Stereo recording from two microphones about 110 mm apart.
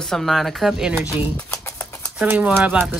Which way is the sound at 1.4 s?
20° left (ahead or behind).